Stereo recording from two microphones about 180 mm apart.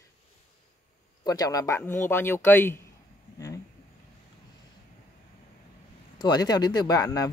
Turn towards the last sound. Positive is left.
turn(degrees=20)  # may be behind; listen again after turning